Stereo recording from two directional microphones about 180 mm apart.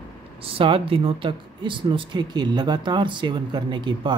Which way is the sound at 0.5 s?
30° right (ahead or behind).